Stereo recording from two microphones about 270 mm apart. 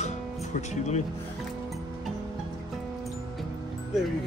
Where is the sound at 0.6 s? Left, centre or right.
Left.